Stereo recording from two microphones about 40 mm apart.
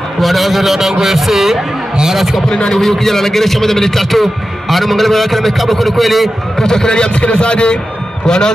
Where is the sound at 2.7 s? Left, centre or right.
Centre.